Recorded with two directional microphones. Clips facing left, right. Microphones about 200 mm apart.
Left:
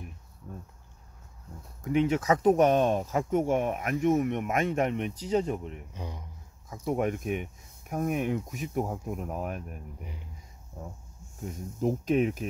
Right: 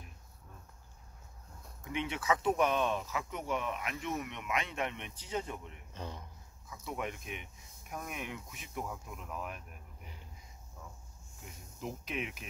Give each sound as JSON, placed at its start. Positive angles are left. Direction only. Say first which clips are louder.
{"t": 1.9, "sound": "speech", "louder": "left 9 dB", "side_deg": 40}
{"t": 5.9, "sound": "speech", "louder": "right 2 dB", "side_deg": 15}
{"t": 6.7, "sound": "speech", "louder": "left 11 dB", "side_deg": 45}